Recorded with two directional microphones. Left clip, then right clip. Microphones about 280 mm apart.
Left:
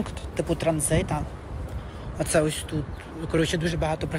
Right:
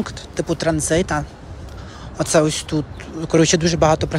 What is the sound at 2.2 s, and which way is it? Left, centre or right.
Speech, centre.